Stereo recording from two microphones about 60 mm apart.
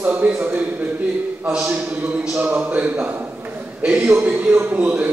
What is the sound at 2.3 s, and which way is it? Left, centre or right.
Speech, right.